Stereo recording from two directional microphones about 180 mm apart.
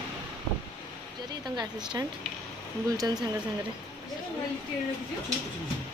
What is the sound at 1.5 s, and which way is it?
Speech, 25° right (ahead or behind).